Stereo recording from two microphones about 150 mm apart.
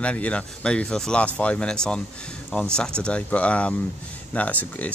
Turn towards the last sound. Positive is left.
turn(degrees=10)  # may be behind; listen again after turning